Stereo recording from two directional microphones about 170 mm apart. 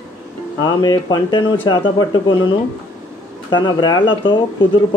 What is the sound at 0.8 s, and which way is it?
Speech, 25° left (ahead or behind).